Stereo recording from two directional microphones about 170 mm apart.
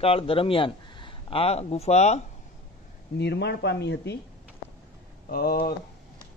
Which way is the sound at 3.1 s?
80° left.